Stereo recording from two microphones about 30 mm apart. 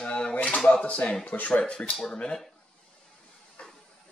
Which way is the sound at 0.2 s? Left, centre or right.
Left.